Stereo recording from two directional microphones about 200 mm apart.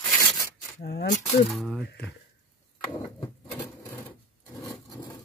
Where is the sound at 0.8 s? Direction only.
50° left (ahead or behind).